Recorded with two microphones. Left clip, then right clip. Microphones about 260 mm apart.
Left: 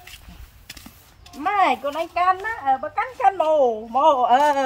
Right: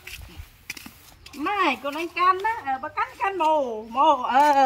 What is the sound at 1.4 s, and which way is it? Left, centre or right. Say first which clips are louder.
Speech: left 4 dB; left.